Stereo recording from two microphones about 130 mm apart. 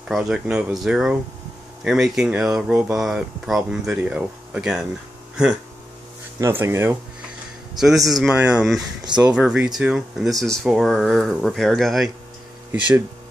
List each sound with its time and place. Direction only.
0.1 s speech: 5° right (ahead or behind)
6.4 s speech: 20° right (ahead or behind)
7.8 s speech: centre (ahead or behind)